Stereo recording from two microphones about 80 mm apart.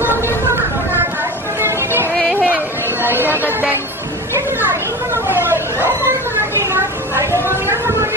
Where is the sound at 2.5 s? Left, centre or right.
Right.